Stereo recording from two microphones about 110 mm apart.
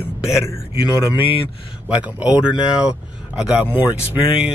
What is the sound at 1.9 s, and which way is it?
Speech, 10° right (ahead or behind).